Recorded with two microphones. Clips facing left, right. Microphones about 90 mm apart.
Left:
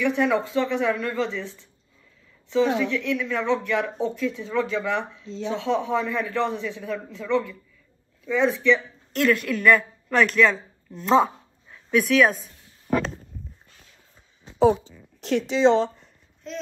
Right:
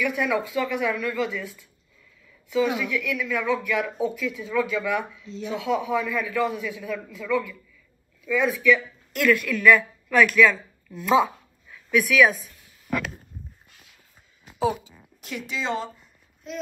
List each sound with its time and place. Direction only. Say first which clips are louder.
0.0 s speech: left 3 dB; 30° left (ahead or behind)
11.0 s dog: left 1 dB; 35° left (ahead or behind)
14.6 s a sound: left 6 dB; 10° right (ahead or behind)
15.4 s speech: left 10 dB; 50° right (ahead or behind)
16.5 s speech: even; 5° right (ahead or behind)